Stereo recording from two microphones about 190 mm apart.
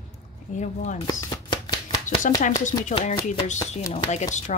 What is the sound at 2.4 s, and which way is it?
Speech, 40° left (ahead or behind).